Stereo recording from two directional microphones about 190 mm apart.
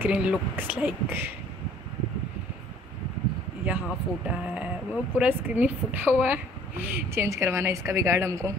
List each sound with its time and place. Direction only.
0.0 s a woman's voice: 5° right (ahead or behind)
3.6 s a woman's voice: 5° right (ahead or behind)